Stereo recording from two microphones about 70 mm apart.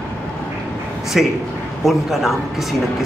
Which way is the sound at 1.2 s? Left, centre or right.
Centre.